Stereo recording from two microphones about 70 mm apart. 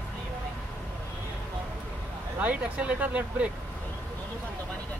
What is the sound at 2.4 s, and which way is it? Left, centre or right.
Speech, right.